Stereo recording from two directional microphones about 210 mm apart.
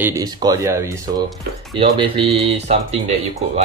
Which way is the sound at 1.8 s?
25° right (ahead or behind).